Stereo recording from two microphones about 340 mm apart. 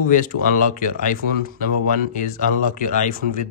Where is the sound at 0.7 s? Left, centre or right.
Left.